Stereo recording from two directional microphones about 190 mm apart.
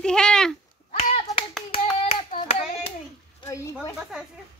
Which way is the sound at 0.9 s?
30° left (ahead or behind).